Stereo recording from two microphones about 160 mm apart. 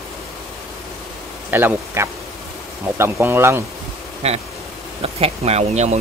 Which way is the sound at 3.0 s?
15° right (ahead or behind).